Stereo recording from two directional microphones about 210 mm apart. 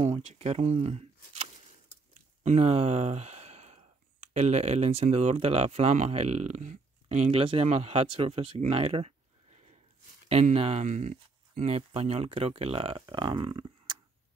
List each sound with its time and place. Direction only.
0.0 s speech: 30° right (ahead or behind)
2.4 s speech: 30° right (ahead or behind)